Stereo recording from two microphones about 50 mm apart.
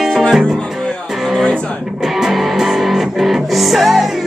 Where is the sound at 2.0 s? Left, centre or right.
Centre.